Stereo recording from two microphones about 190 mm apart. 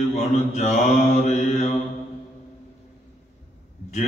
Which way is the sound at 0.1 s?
35° left (ahead or behind).